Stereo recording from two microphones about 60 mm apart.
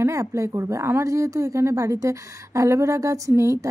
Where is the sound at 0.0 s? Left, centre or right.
Right.